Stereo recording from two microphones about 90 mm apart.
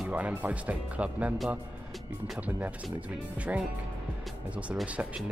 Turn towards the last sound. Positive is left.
turn(degrees=-15)  # may be behind; listen again after turning